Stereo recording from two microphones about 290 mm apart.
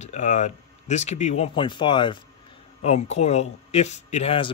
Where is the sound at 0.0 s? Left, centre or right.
Left.